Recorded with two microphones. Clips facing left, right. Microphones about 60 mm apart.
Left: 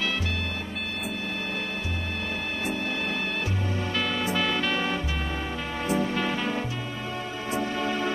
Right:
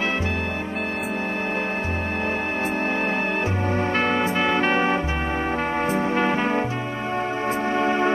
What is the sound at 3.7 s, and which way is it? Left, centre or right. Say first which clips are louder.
Music: right 8 dB; right.